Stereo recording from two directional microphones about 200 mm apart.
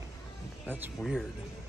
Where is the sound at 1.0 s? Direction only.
Centre (ahead or behind).